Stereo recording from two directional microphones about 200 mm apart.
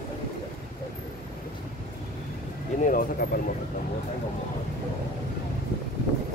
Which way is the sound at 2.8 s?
45° left (ahead or behind).